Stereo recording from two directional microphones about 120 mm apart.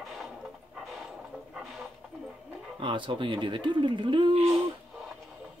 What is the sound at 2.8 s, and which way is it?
Speech, 45° right (ahead or behind).